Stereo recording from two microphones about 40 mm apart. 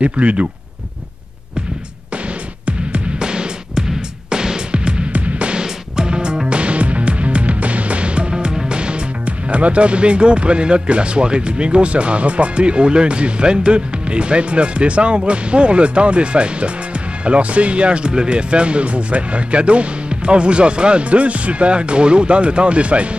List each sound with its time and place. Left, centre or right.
0.0 s speech: right
2.6 s music: right
5.1 s music: right
5.6 s music: centre
9.2 s speech: right